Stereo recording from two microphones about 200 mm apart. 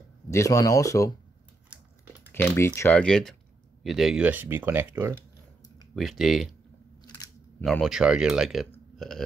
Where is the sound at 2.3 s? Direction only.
10° left (ahead or behind).